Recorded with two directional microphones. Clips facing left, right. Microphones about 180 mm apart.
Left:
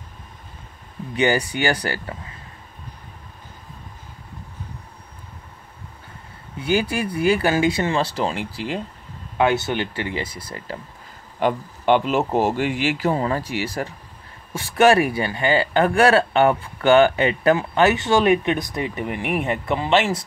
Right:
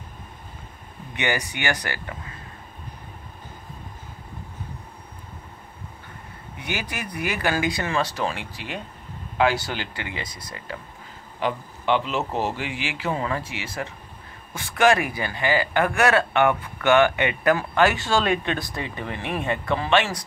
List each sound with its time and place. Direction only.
1.1 s speech: 30° left (ahead or behind)
6.6 s speech: 30° left (ahead or behind)
11.3 s a man's voice: 50° left (ahead or behind); by 17.6 s 30° left (ahead or behind)
17.6 s speech: 20° left (ahead or behind)